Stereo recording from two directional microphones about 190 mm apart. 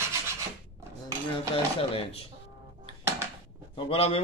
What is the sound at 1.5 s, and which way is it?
Speech, 30° left (ahead or behind).